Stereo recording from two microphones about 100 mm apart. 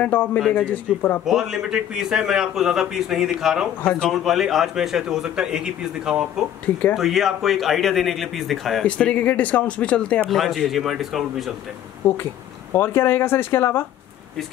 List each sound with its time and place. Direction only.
0.0 s speech: 15° left (ahead or behind)
0.4 s a man's voice: centre (ahead or behind)
0.7 s speech: 15° left (ahead or behind)
1.2 s a man's voice: 5° right (ahead or behind)
8.8 s speech: 10° left (ahead or behind)
10.3 s a man's voice: centre (ahead or behind)
12.0 s speech: 20° left (ahead or behind)